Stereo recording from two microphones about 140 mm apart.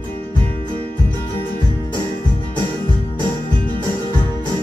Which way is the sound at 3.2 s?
30° right (ahead or behind).